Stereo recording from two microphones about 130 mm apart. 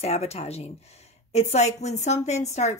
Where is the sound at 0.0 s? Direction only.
55° left (ahead or behind).